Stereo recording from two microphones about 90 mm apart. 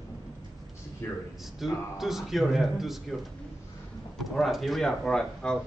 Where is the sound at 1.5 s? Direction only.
5° right (ahead or behind).